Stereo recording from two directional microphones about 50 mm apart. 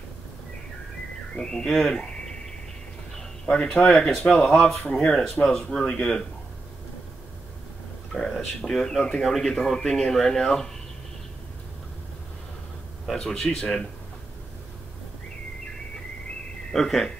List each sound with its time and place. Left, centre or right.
1.3 s speech: centre
3.6 s speech: centre
4.4 s speech: centre
8.1 s speech: centre
13.0 s speech: centre
16.7 s speech: centre